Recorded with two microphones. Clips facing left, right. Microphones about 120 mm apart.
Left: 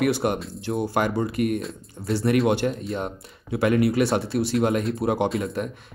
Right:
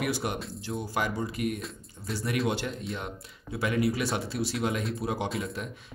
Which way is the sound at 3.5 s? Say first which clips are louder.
Left 7 dB; 60° left (ahead or behind).